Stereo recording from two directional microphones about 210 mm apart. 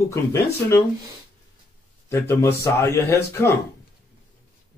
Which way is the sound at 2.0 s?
10° left (ahead or behind).